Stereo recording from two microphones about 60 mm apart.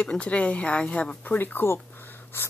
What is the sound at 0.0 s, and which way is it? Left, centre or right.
A woman's voice, left.